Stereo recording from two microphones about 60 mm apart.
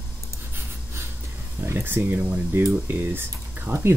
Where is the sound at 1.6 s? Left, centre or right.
Right.